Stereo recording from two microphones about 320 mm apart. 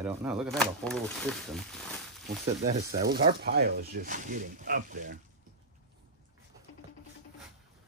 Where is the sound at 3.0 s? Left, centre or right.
Centre.